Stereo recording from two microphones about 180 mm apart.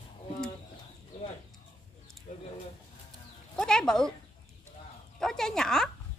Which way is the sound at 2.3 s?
40° left (ahead or behind).